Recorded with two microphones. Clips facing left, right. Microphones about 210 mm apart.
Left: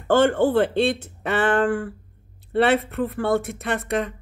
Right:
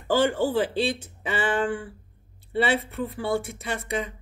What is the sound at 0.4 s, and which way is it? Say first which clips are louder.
Speech: left 5 dB; 60° left (ahead or behind).